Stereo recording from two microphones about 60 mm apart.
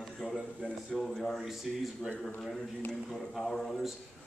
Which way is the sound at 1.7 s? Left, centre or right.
Centre.